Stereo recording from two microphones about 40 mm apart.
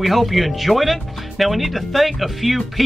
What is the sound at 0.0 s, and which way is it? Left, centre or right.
A woman's voice, centre.